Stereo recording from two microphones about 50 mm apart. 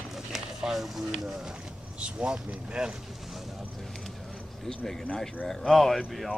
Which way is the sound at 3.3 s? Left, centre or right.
Centre.